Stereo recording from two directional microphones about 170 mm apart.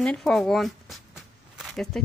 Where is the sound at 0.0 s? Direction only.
5° left (ahead or behind).